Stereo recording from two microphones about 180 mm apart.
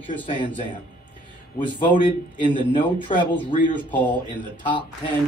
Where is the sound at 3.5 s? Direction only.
45° left (ahead or behind).